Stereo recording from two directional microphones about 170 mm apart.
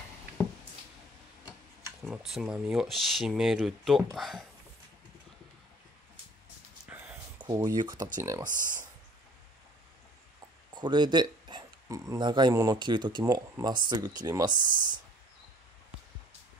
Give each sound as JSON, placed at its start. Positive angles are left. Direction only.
{"t": 2.0, "sound": "speech", "side_deg": -5}
{"t": 6.9, "sound": "a sound", "side_deg": -10}
{"t": 7.4, "sound": "speech", "side_deg": -20}
{"t": 8.5, "sound": "speech", "side_deg": -50}
{"t": 10.7, "sound": "speech", "side_deg": -25}